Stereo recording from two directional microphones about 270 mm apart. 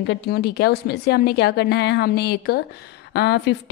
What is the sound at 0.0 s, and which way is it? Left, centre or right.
A woman's voice, left.